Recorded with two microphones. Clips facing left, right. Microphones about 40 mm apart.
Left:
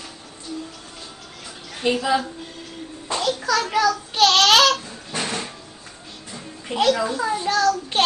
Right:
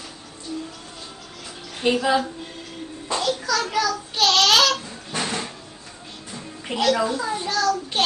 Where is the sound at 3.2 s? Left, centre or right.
Left.